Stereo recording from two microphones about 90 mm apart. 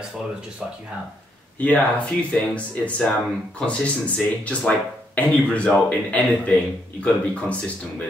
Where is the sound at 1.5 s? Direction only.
15° left (ahead or behind).